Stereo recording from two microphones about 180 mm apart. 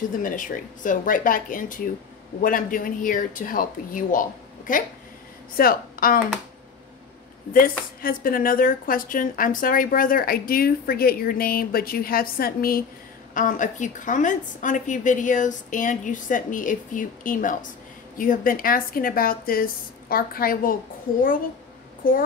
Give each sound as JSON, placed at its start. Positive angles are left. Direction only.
{"t": 0.2, "sound": "a woman's voice", "side_deg": 45}
{"t": 8.0, "sound": "a woman's voice", "side_deg": 55}
{"t": 22.0, "sound": "a woman's voice", "side_deg": 50}